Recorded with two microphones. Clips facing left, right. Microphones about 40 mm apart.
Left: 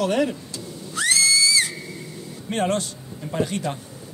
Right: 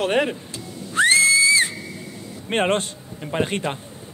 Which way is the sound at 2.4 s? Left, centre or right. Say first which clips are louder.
Right 3 dB; right.